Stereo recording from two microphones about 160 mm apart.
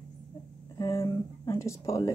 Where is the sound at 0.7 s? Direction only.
20° left (ahead or behind).